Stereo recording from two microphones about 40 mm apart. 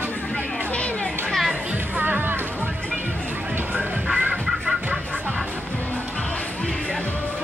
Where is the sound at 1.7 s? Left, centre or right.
Right.